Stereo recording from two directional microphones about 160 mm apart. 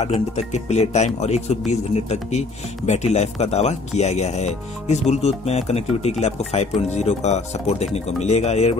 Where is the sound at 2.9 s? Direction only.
45° left (ahead or behind).